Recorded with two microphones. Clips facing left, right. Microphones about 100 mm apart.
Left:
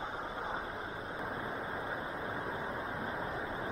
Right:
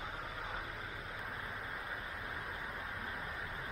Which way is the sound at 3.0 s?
30° left (ahead or behind).